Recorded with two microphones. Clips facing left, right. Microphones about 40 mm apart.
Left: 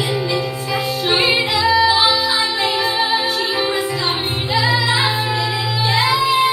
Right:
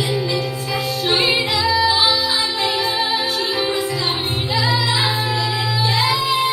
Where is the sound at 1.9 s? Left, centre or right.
Centre.